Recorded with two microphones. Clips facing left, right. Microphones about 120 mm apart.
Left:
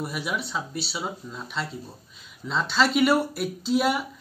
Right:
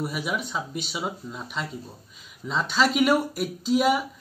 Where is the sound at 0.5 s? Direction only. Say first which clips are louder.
Even; 10° right (ahead or behind).